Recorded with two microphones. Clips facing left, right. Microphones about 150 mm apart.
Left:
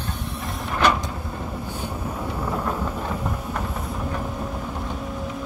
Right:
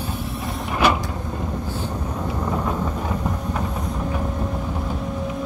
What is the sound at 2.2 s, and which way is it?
Train, 10° right (ahead or behind).